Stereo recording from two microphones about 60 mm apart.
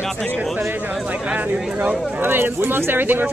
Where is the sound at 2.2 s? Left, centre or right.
Right.